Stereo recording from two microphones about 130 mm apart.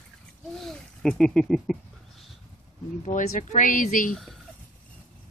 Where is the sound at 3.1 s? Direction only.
80° left.